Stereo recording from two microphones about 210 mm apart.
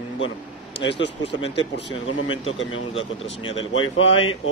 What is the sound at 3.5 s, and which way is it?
Speech, 65° left (ahead or behind).